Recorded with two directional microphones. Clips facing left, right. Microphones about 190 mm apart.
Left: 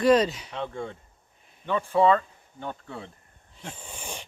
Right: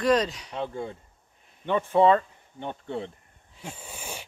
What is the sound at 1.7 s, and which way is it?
Speech, 20° right (ahead or behind).